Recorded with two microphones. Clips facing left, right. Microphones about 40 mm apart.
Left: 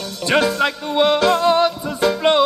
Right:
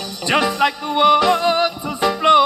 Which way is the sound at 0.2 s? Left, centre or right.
Centre.